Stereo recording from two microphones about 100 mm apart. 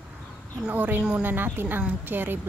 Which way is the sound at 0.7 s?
20° right (ahead or behind).